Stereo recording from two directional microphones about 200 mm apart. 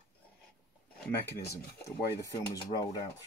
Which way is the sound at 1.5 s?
15° left (ahead or behind).